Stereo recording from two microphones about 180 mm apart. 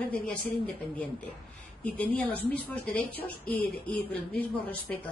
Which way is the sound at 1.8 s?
5° left (ahead or behind).